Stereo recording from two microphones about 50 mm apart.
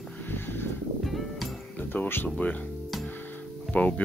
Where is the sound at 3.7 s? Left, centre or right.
Left.